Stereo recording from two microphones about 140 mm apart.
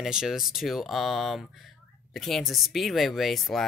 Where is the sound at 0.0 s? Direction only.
5° right (ahead or behind).